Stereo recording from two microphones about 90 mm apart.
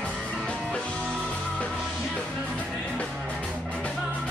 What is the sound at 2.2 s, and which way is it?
Music, 5° left (ahead or behind).